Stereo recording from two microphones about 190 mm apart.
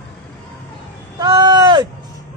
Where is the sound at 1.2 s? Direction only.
25° right (ahead or behind).